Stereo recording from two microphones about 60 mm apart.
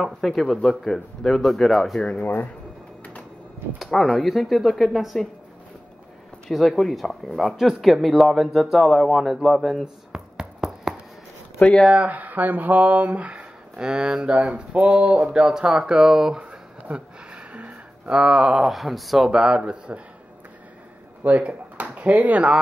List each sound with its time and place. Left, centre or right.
0.0 s speech: centre
2.0 s speech: centre
3.8 s speech: centre
6.5 s speech: centre
10.1 s a sound: centre
11.8 s speech: centre
16.4 s a sound: centre
18.5 s speech: centre
21.2 s speech: right